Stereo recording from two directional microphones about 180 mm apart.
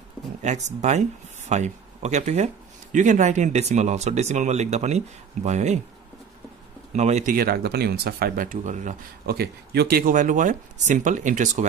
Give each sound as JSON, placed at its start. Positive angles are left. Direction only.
{"t": 0.4, "sound": "speech", "side_deg": -40}
{"t": 6.9, "sound": "speech", "side_deg": -40}
{"t": 7.3, "sound": "speech", "side_deg": -60}
{"t": 9.2, "sound": "speech", "side_deg": -60}